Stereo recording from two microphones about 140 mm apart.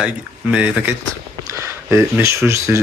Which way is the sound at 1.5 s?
20° right (ahead or behind).